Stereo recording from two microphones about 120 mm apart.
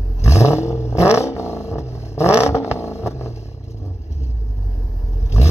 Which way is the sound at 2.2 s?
10° right (ahead or behind).